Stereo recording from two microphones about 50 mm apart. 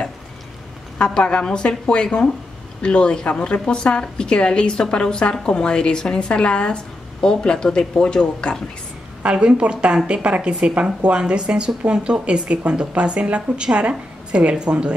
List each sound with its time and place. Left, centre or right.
0.9 s a woman's voice: centre
9.2 s speech: right